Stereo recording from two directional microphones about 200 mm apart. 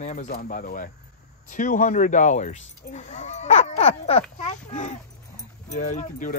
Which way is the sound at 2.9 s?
35° left (ahead or behind).